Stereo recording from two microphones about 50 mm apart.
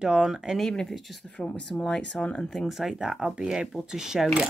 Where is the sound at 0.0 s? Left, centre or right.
Centre.